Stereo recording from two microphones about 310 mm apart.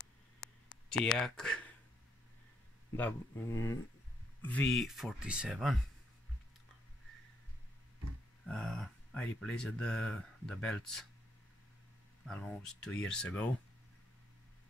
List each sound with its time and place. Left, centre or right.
0.0 s a sound: left
1.1 s speech: centre
3.0 s speech: centre
8.5 s speech: centre
12.3 s speech: centre